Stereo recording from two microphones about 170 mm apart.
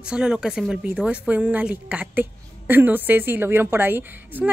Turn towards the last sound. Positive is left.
turn(degrees=-10)  # may be behind; listen again after turning